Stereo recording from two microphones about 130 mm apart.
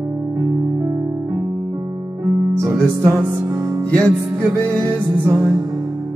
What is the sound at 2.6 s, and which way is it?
Music, 20° right (ahead or behind).